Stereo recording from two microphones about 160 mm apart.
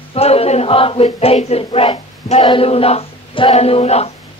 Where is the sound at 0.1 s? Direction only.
40° left (ahead or behind).